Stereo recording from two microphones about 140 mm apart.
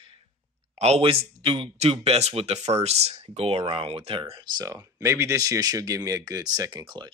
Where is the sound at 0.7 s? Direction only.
50° right (ahead or behind).